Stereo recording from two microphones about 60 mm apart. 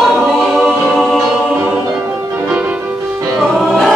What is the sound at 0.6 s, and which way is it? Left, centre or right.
Music, centre.